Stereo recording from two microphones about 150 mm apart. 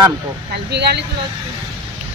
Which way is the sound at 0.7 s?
90° right.